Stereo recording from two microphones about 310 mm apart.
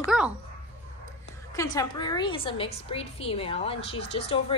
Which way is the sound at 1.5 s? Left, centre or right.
Centre.